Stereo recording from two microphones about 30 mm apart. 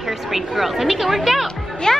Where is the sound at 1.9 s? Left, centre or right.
Left.